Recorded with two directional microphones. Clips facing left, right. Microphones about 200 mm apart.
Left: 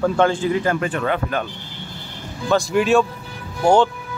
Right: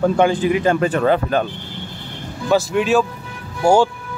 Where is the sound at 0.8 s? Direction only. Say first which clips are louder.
Right 5 dB; 40° right (ahead or behind).